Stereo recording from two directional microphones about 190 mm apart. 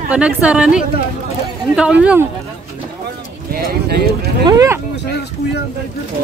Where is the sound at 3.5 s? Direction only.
55° right (ahead or behind).